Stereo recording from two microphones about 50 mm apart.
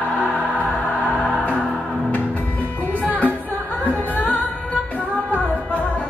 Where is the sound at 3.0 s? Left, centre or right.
Left.